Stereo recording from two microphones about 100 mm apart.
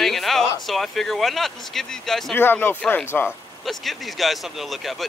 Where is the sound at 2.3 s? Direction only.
20° left (ahead or behind).